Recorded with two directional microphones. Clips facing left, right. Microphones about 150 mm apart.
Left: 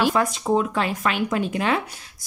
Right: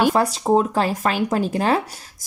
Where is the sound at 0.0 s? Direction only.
35° right (ahead or behind).